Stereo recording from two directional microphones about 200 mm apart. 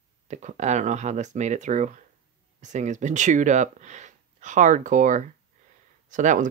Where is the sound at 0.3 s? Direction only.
35° right (ahead or behind).